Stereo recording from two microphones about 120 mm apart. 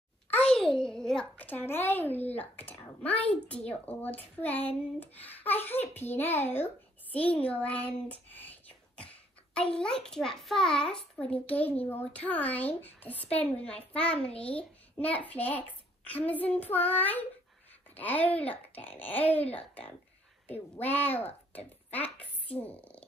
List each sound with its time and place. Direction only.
0.3 s a child's voice: 10° left (ahead or behind)
21.2 s speech: 60° left (ahead or behind)
21.9 s a sound: 15° left (ahead or behind)